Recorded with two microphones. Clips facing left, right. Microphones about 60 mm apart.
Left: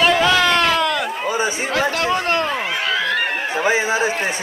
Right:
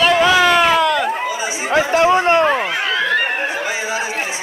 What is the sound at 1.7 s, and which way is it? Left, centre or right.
Chatter, centre.